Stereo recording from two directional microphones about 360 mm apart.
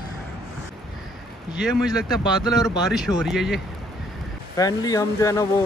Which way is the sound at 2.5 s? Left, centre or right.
Centre.